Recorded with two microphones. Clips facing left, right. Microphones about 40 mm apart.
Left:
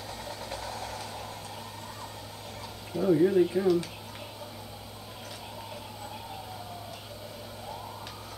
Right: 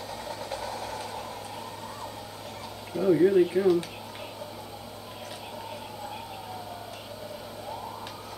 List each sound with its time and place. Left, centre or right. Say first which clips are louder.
0.2 s vehicle: right 3 dB; centre
2.9 s speech: right 2 dB; centre